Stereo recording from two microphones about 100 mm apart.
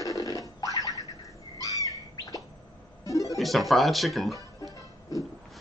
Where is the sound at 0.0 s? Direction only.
35° left (ahead or behind).